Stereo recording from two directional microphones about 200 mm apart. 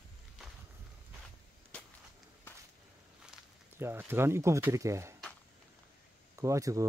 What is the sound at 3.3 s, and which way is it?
Speech, 10° right (ahead or behind).